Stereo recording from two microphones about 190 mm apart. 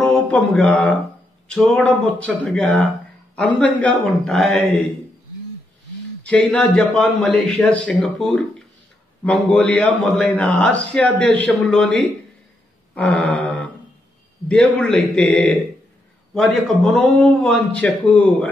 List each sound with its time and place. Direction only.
0.0 s mantra: 5° left (ahead or behind)
1.5 s a man's voice: 5° left (ahead or behind)
6.2 s a man's voice: 5° left (ahead or behind)
12.9 s a sound: 5° left (ahead or behind)
14.5 s a man's voice: 5° left (ahead or behind)